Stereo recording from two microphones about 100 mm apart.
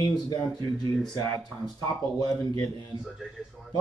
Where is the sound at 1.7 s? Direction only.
40° left (ahead or behind).